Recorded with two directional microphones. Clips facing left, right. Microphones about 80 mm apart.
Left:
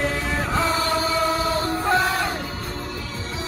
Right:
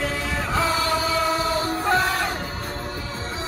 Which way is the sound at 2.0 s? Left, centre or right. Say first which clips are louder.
Left 1 dB; centre.